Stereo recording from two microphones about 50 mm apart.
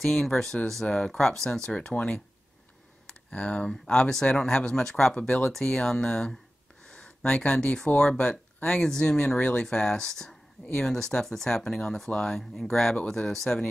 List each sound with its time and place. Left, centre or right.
0.0 s speech: centre
3.1 s computer keyboard: centre
3.6 s speech: centre